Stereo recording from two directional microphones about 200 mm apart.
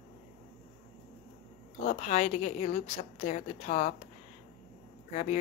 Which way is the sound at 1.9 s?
35° left (ahead or behind).